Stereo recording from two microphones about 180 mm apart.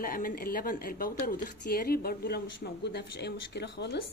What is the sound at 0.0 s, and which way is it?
Speech, 50° left (ahead or behind).